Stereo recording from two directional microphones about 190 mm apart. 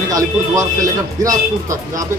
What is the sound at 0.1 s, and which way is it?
A man's voice, 15° right (ahead or behind).